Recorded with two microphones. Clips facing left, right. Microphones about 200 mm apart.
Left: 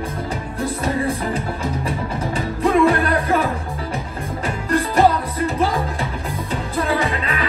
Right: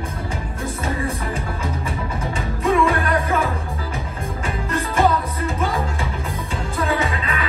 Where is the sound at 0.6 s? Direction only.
30° left (ahead or behind).